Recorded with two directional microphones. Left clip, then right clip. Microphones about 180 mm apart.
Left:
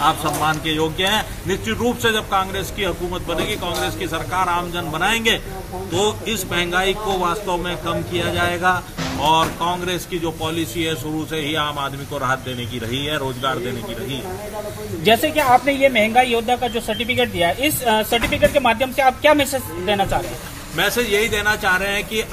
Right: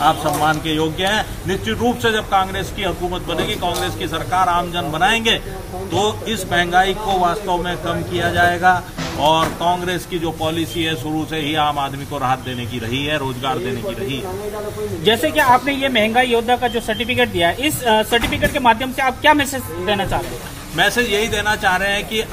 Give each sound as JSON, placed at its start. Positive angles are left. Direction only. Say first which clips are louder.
{"t": 0.0, "sound": "a man's voice", "louder": "right 2 dB", "side_deg": 0}
{"t": 15.0, "sound": "speech", "louder": "right 1 dB", "side_deg": 40}
{"t": 20.7, "sound": "a man's voice", "louder": "right 2 dB", "side_deg": 0}